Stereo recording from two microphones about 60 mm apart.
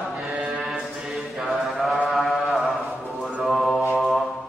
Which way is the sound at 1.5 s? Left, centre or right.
Centre.